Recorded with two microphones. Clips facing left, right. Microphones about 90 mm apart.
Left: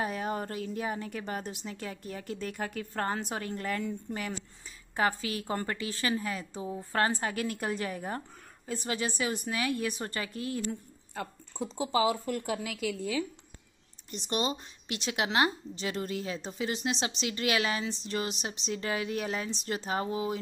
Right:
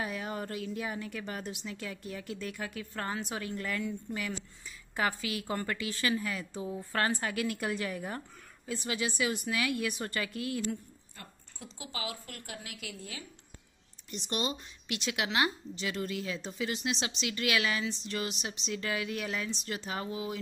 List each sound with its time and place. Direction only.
0.0 s a woman's voice: 35° left (ahead or behind)
11.2 s speech: 90° left
14.1 s a woman's voice: 30° left (ahead or behind)